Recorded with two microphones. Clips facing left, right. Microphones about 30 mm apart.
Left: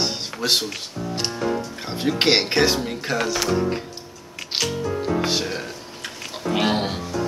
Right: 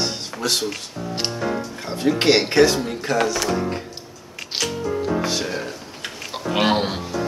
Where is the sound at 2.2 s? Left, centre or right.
Centre.